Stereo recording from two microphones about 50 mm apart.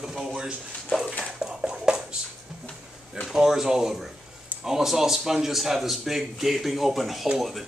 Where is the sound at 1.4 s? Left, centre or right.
Centre.